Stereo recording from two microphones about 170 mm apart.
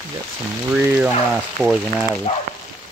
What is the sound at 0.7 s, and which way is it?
Rain, 10° right (ahead or behind).